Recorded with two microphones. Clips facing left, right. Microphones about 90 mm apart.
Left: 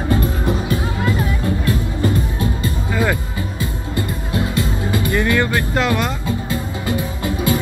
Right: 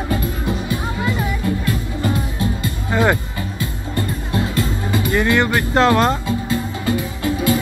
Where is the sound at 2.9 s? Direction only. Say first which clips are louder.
Right 3 dB; 20° right (ahead or behind).